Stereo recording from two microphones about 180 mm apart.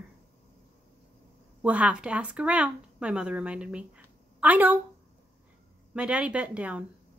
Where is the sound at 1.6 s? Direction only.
5° right (ahead or behind).